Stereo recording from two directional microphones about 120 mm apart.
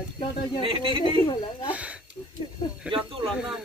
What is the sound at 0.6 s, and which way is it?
Speech, 45° right (ahead or behind).